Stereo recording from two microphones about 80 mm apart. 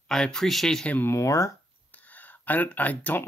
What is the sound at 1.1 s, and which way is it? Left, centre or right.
Speech, left.